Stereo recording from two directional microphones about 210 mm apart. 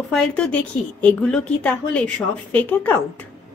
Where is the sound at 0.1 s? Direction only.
5° left (ahead or behind).